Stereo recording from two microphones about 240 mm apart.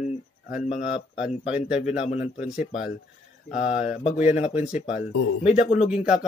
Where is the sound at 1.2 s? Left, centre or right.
Centre.